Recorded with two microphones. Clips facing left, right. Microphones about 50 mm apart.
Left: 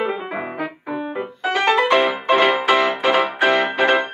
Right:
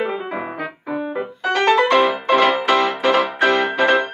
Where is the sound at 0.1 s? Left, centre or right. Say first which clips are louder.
Even; centre.